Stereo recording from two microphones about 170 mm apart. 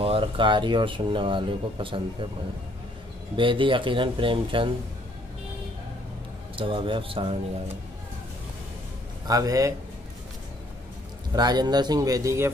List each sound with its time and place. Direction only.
0.0 s speech: 30° right (ahead or behind)
3.3 s speech: 30° right (ahead or behind)
6.5 s speech: 30° right (ahead or behind)
9.3 s speech: 20° right (ahead or behind)
11.3 s speech: 25° right (ahead or behind)